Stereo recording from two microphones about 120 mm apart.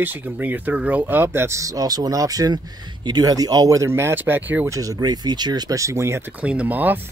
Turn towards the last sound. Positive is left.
turn(degrees=-15)  # may be behind; listen again after turning